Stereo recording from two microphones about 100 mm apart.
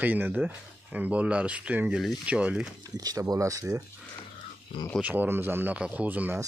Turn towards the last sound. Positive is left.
turn(degrees=-15)  # may be behind; listen again after turning